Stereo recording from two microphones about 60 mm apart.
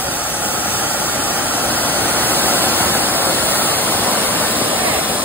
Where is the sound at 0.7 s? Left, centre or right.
Right.